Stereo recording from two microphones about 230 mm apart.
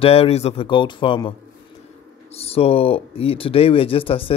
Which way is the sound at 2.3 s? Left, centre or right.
Left.